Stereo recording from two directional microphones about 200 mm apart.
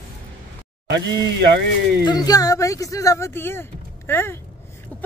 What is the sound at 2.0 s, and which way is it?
Speech, 20° left (ahead or behind).